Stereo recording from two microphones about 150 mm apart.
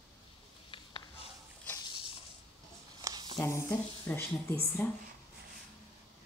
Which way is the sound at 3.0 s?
25° right (ahead or behind).